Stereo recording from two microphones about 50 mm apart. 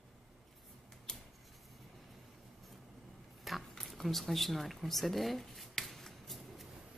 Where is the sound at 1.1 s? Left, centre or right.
Centre.